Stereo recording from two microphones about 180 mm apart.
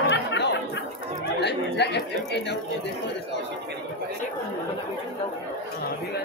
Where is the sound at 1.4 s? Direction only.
70° left (ahead or behind).